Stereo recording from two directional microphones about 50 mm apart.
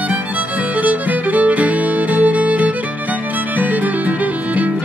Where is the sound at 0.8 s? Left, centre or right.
Right.